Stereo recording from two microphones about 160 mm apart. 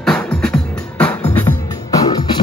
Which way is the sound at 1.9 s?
25° left (ahead or behind).